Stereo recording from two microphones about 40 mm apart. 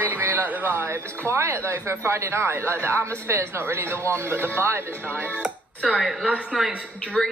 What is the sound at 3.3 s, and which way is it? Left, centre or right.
Speech, right.